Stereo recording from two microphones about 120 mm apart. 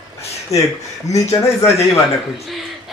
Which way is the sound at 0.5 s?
25° left (ahead or behind).